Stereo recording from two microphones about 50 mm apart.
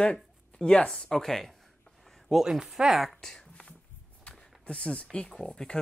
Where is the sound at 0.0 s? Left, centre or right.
Left; by 2.4 s centre.